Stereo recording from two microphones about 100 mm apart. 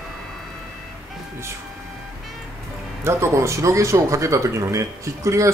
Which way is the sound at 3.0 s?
30° right (ahead or behind).